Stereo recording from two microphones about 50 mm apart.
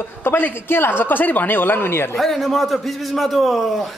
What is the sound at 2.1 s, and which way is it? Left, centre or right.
A man's voice, centre.